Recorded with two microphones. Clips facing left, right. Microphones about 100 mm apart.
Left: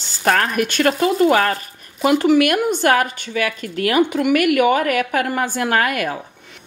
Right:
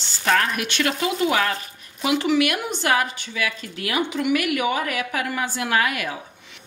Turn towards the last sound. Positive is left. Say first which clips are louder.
# left 4 dB
turn(degrees=50)  # may be behind; listen again after turning